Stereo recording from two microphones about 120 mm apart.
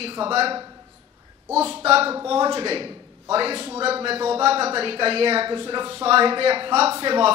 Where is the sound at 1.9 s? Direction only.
55° right (ahead or behind).